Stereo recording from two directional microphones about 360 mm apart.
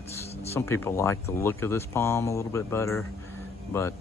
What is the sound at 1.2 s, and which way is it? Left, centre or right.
Speech, centre.